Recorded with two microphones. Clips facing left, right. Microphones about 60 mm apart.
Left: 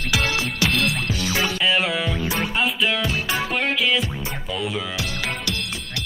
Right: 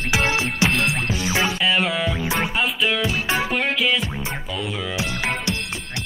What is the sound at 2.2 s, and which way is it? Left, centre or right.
Music, right.